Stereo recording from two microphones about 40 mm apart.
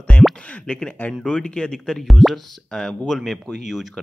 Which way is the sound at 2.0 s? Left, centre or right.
Centre.